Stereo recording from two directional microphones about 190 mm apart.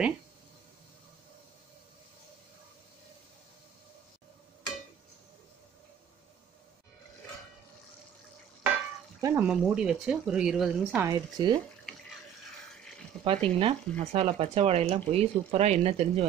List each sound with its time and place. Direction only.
9.2 s speech: 10° right (ahead or behind)
11.1 s speech: 20° right (ahead or behind)
13.2 s speech: 30° right (ahead or behind)